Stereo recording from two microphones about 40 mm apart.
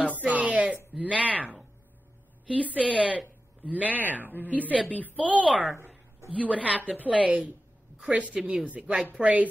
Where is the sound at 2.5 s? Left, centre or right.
Right.